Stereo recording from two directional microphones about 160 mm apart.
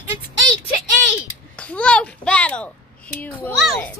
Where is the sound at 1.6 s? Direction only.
5° left (ahead or behind).